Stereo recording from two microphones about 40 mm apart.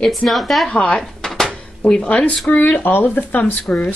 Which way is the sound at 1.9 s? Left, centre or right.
Left.